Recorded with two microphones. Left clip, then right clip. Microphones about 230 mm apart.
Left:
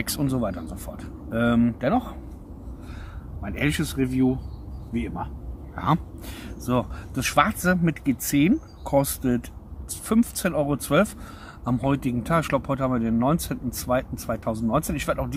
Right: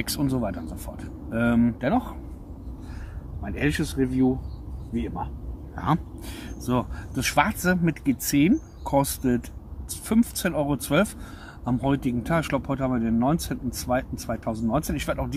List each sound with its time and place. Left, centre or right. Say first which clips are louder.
0.0 s speech: left 1 dB; centre
3.4 s speech: even; centre